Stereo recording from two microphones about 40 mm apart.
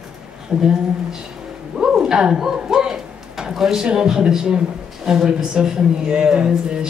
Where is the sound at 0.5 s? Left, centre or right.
Right.